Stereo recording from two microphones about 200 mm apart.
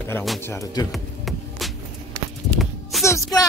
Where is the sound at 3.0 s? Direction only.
15° left (ahead or behind).